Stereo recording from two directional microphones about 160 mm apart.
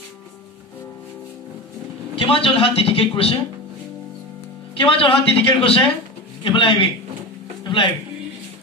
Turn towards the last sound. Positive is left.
turn(degrees=30)  # may be behind; listen again after turning